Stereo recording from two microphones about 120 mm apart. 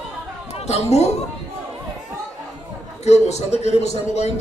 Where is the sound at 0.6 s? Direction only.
65° left (ahead or behind).